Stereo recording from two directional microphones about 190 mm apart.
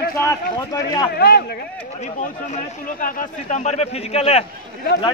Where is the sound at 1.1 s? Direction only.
55° left (ahead or behind).